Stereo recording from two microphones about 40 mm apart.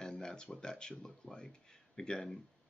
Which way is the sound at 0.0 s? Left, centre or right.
Centre.